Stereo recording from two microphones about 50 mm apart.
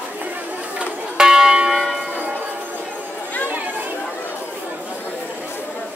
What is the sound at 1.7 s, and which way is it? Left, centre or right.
Church bell, centre.